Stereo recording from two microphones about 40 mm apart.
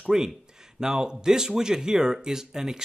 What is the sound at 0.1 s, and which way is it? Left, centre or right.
Speech, centre.